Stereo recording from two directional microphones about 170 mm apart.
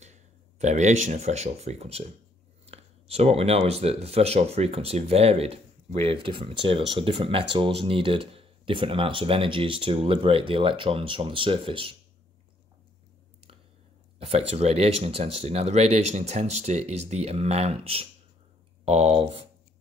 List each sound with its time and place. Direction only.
0.0 s speech: 40° right (ahead or behind)
14.1 s a sound: 35° right (ahead or behind)
14.5 s speech: 35° right (ahead or behind)